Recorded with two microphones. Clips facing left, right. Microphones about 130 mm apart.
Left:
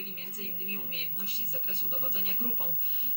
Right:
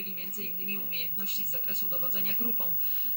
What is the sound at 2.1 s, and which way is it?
Speech, 5° left (ahead or behind).